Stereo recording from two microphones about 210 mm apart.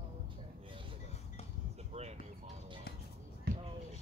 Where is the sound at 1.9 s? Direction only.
35° right (ahead or behind).